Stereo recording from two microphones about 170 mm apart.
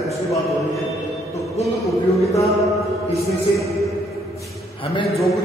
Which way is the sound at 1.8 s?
20° left (ahead or behind).